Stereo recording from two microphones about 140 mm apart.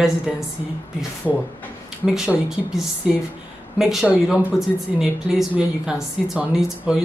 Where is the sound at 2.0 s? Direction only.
5° right (ahead or behind).